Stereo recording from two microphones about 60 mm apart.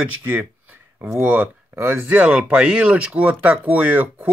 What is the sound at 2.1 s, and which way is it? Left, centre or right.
Speech, centre.